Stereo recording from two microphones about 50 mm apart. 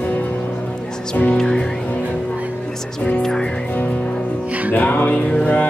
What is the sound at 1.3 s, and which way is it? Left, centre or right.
Music, centre.